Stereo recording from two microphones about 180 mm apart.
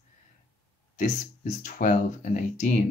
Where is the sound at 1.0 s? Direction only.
45° left (ahead or behind).